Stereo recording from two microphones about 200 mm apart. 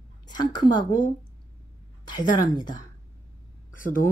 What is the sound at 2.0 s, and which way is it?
Speech, 20° left (ahead or behind).